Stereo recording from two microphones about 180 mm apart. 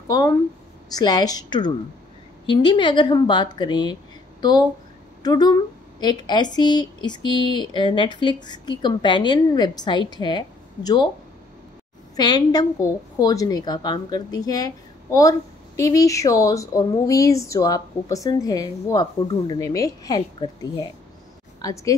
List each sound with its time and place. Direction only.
0.1 s a woman's voice: 20° left (ahead or behind)
12.2 s a woman's voice: 20° left (ahead or behind)
21.5 s a woman's voice: 20° left (ahead or behind)